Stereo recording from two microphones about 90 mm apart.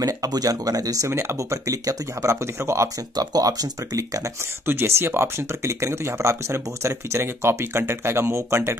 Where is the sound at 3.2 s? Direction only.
45° right (ahead or behind).